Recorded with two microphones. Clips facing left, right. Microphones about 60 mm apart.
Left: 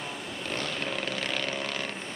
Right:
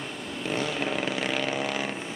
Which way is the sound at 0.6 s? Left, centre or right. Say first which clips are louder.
Right 5 dB; centre.